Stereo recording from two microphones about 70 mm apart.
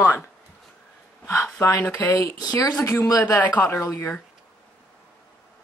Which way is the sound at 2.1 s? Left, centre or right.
Left.